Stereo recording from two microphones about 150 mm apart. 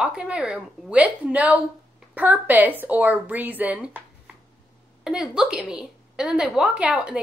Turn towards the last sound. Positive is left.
turn(degrees=-5)  # may be behind; listen again after turning